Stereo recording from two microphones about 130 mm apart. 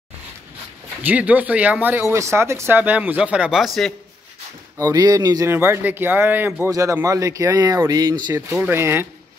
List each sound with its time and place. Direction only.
1.0 s a man's voice: 10° right (ahead or behind)
4.7 s speech: 25° right (ahead or behind)
5.5 s a man's voice: 20° right (ahead or behind)
8.5 s a man's voice: 5° right (ahead or behind)
8.7 s a man's voice: 20° right (ahead or behind)